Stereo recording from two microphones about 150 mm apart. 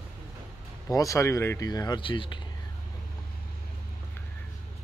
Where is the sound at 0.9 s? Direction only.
20° left (ahead or behind).